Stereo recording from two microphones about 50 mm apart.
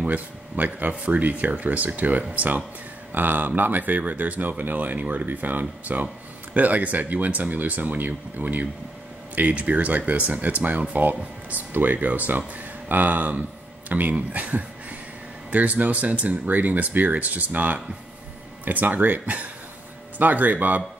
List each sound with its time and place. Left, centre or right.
0.0 s speech: right
3.1 s speech: right